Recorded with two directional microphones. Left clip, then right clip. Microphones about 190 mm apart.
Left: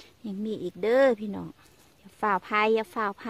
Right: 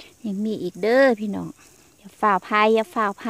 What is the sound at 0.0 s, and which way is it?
Speech, 40° right (ahead or behind).